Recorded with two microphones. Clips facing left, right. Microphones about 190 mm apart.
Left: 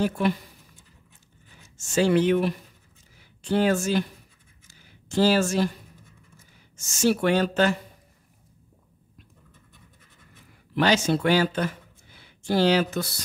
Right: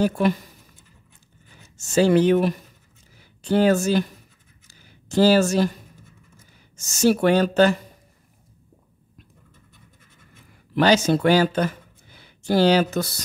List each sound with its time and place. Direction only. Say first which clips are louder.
0.0 s speech: right 4 dB; 40° right (ahead or behind)
1.8 s speech: right 4 dB; 40° right (ahead or behind)
5.0 s speech: right 4 dB; 40° right (ahead or behind)
6.8 s speech: right 4 dB; 40° right (ahead or behind)
10.7 s speech: right 4 dB; 40° right (ahead or behind)